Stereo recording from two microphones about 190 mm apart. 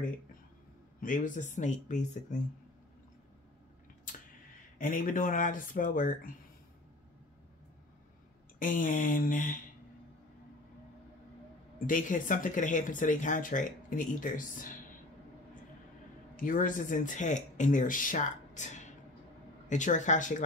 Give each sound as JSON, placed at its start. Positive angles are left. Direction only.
{"t": 1.0, "sound": "speech", "side_deg": 45}
{"t": 4.7, "sound": "speech", "side_deg": 45}
{"t": 8.5, "sound": "speech", "side_deg": 45}
{"t": 11.8, "sound": "speech", "side_deg": 45}
{"t": 16.3, "sound": "speech", "side_deg": 45}